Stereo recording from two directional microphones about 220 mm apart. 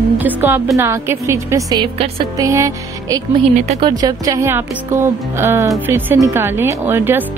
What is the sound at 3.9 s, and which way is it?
Speech, 15° right (ahead or behind).